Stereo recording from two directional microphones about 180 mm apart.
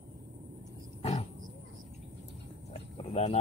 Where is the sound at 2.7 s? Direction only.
35° left (ahead or behind).